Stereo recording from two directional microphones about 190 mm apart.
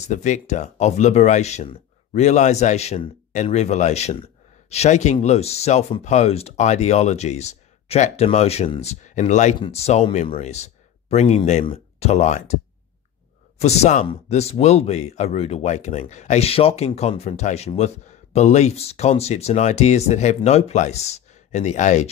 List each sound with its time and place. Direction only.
0.0 s speech: 40° left (ahead or behind)
13.6 s speech: 35° left (ahead or behind)